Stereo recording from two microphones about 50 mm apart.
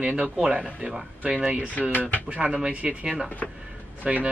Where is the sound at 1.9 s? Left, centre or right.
Left.